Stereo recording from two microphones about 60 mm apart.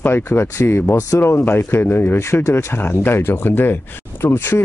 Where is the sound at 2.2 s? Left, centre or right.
Left.